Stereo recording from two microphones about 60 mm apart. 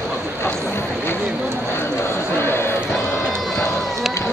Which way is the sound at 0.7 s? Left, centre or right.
Left.